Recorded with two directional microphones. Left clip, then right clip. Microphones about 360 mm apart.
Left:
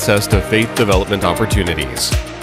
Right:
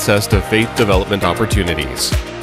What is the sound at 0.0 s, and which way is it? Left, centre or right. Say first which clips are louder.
Speech: even; centre.